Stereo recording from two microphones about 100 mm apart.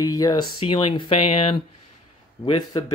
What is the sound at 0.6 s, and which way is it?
Speech, 55° left (ahead or behind).